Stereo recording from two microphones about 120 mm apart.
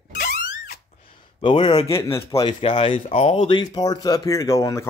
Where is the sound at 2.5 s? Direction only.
50° left (ahead or behind).